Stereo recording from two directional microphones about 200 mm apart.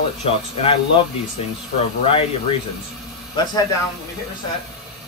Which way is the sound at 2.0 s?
30° left (ahead or behind).